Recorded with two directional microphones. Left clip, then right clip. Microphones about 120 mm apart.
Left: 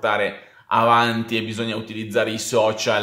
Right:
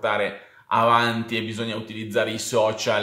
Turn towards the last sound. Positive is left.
turn(degrees=25)  # may be behind; listen again after turning